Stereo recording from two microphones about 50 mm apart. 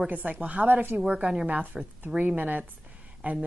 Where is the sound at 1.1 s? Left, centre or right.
Right.